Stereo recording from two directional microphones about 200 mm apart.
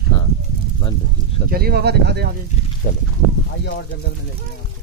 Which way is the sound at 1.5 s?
50° right (ahead or behind).